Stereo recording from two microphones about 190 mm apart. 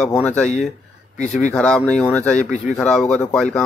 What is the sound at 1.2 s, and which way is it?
Speech, 40° left (ahead or behind).